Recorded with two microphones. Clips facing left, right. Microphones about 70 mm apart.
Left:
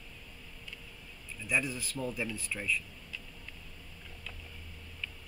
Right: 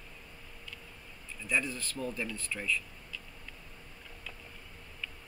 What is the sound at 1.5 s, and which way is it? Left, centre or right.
Speech, centre.